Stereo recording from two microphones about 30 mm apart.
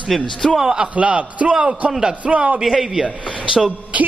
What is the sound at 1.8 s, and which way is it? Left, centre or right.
Speech, right.